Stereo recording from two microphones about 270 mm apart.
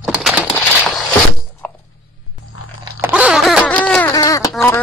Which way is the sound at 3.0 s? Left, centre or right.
Centre.